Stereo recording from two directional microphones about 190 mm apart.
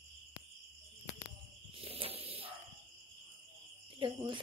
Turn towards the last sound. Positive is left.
turn(degrees=-25)  # may be behind; listen again after turning